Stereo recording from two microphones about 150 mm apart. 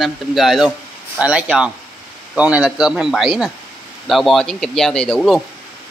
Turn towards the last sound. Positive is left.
turn(degrees=5)  # may be behind; listen again after turning